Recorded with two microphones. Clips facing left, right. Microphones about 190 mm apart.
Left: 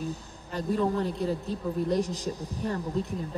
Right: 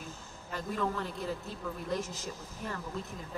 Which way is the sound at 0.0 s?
35° left (ahead or behind).